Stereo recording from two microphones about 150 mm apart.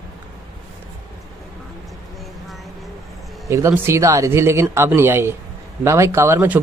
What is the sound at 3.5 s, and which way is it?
A man's voice, 20° right (ahead or behind).